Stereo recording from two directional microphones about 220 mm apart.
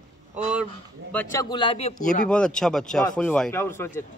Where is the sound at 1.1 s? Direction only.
15° left (ahead or behind); by 2.2 s 35° left (ahead or behind).